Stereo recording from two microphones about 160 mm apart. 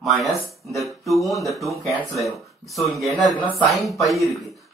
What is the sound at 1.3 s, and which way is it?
Speech, centre (ahead or behind).